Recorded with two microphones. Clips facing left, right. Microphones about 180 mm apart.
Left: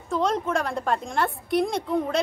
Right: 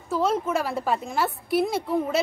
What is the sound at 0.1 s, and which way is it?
A woman's voice, 5° right (ahead or behind).